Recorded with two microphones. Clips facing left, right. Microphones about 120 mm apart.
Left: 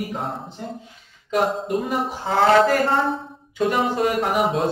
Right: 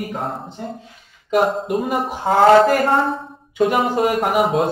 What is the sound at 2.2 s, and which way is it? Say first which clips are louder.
A woman's voice: right 5 dB; 45° right (ahead or behind).